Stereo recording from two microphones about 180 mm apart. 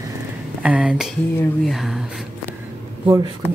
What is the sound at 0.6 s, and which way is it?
Speech, 5° right (ahead or behind).